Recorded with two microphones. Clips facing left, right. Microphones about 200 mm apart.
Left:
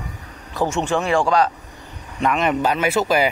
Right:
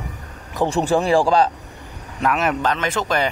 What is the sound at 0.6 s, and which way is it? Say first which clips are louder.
Speech: right 3 dB; 35° right (ahead or behind).